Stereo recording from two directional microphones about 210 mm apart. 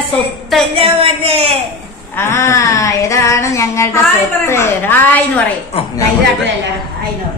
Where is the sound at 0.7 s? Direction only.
25° right (ahead or behind).